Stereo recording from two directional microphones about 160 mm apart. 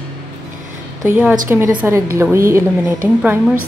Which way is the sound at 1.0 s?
10° right (ahead or behind).